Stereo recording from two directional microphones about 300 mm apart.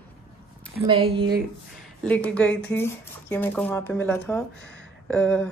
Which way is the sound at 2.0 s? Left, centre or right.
Centre.